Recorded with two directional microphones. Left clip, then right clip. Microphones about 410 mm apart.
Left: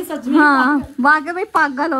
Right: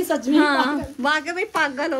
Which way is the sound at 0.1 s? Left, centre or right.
Centre.